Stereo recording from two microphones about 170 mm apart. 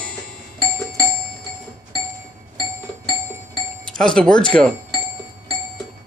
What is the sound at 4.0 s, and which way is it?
Speech, 5° left (ahead or behind).